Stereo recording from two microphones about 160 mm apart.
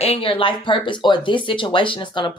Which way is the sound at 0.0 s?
35° left (ahead or behind).